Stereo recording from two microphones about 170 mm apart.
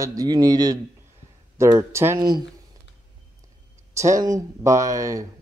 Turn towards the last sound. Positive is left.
turn(degrees=-20)  # may be behind; listen again after turning